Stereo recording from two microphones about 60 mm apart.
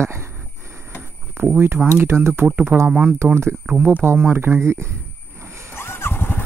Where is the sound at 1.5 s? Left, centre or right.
Right.